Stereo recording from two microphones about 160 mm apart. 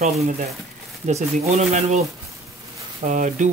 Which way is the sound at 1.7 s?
45° right (ahead or behind).